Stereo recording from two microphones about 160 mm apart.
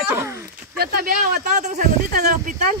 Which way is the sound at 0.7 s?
75° right (ahead or behind).